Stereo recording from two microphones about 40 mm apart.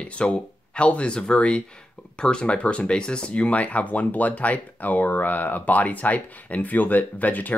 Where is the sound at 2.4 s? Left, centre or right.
Left.